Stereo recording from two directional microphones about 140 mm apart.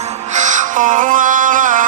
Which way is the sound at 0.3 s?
60° right (ahead or behind).